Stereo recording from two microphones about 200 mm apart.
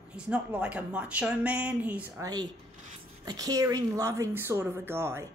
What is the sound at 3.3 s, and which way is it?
Speech, 20° right (ahead or behind).